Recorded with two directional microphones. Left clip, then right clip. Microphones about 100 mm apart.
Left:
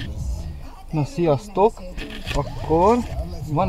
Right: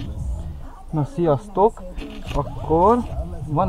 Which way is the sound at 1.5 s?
10° left (ahead or behind).